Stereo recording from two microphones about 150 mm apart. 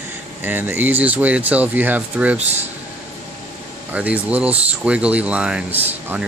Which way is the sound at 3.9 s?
10° right (ahead or behind).